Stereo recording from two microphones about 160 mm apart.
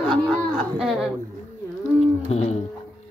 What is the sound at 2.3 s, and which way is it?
Music, 45° left (ahead or behind).